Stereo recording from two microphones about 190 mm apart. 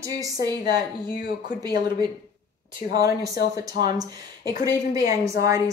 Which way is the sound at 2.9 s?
20° right (ahead or behind).